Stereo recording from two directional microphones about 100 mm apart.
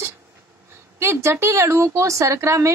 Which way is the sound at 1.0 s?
25° right (ahead or behind).